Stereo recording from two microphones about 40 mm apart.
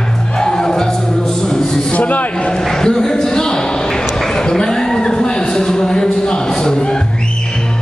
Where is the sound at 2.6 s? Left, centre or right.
Centre.